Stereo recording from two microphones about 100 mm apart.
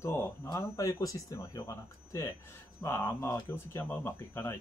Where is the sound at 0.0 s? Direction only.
25° left (ahead or behind).